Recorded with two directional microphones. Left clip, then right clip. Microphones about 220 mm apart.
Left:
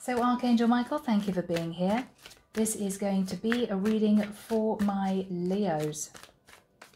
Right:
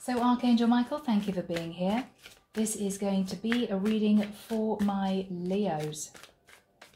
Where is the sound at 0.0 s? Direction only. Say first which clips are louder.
Even; 25° left (ahead or behind).